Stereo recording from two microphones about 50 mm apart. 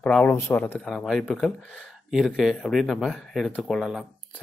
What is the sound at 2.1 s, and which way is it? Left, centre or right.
Speech, centre.